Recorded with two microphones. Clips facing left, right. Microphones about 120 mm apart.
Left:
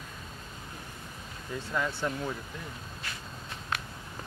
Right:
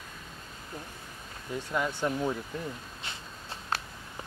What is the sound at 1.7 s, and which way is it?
Speech, 15° right (ahead or behind).